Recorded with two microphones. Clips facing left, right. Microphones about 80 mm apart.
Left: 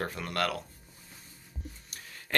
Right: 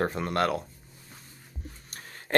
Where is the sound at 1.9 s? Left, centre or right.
Right.